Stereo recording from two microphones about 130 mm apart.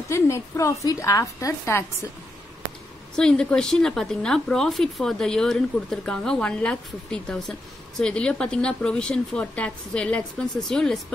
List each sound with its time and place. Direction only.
0.1 s a woman's voice: 20° left (ahead or behind)
3.2 s a woman's voice: 5° left (ahead or behind)